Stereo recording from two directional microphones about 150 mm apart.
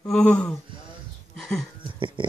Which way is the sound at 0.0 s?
5° left (ahead or behind).